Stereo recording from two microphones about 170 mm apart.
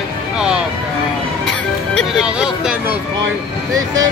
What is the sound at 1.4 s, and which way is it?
Speech, 5° left (ahead or behind).